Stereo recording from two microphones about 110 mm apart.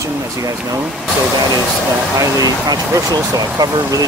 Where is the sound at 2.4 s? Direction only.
35° right (ahead or behind).